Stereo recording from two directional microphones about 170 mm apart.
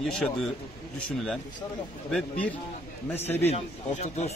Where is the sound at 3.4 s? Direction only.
40° left (ahead or behind).